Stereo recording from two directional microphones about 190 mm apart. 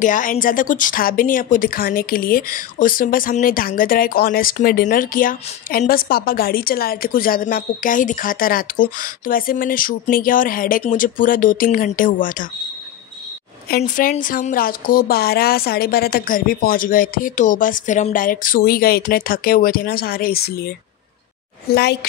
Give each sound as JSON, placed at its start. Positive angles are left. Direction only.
{"t": 0.0, "sound": "speech", "side_deg": 45}
{"t": 13.7, "sound": "a woman's voice", "side_deg": 50}